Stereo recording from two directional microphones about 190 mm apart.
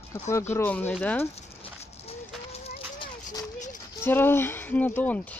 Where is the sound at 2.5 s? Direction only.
35° left (ahead or behind).